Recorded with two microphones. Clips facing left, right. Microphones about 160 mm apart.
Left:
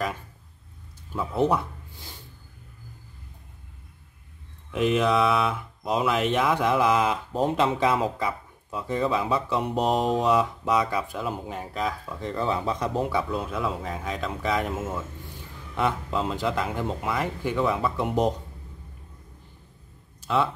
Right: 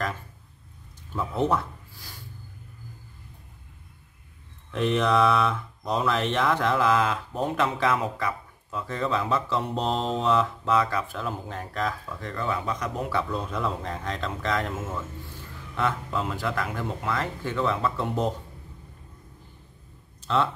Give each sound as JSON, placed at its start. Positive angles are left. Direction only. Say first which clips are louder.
{"t": 1.1, "sound": "speech", "louder": "left 2 dB", "side_deg": 5}
{"t": 4.6, "sound": "speech", "louder": "left 1 dB", "side_deg": 10}
{"t": 12.1, "sound": "speech", "louder": "left 3 dB", "side_deg": 20}
{"t": 13.1, "sound": "speech", "louder": "left 1 dB", "side_deg": 10}
{"t": 20.2, "sound": "a sound", "louder": "even", "side_deg": 10}